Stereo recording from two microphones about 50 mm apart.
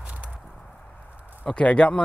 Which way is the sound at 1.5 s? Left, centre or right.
Left.